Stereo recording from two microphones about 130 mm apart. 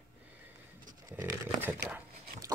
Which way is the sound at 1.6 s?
20° right (ahead or behind).